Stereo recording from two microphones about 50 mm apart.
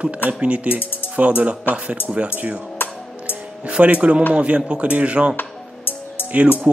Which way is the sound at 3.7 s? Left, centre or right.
Right.